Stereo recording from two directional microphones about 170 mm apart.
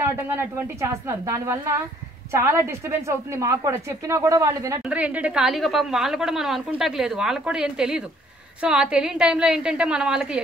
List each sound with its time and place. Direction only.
0.0 s a woman's voice: 15° right (ahead or behind)
4.8 s a woman's voice: 5° right (ahead or behind)